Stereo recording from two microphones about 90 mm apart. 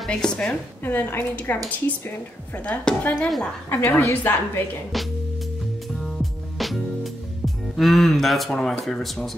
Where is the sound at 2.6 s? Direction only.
15° left (ahead or behind).